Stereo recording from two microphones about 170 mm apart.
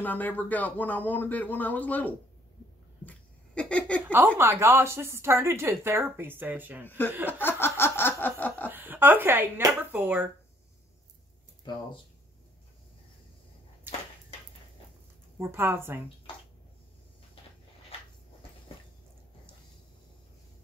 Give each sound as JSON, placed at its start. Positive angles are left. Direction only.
{"t": 0.0, "sound": "speech", "side_deg": 10}
{"t": 3.1, "sound": "laughter", "side_deg": 5}
{"t": 4.4, "sound": "speech", "side_deg": -15}
{"t": 6.9, "sound": "speech", "side_deg": 10}
{"t": 7.2, "sound": "laughter", "side_deg": 10}
{"t": 8.4, "sound": "speech", "side_deg": 10}
{"t": 8.6, "sound": "speech", "side_deg": -10}
{"t": 13.9, "sound": "a sound", "side_deg": -10}
{"t": 15.3, "sound": "speech", "side_deg": -15}
{"t": 17.9, "sound": "cupboard open or close", "side_deg": 35}